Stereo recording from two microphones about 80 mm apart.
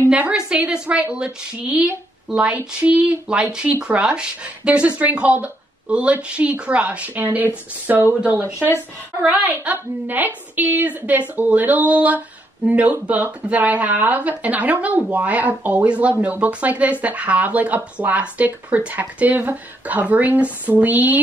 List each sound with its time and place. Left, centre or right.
0.1 s a woman's voice: centre
9.4 s speech: right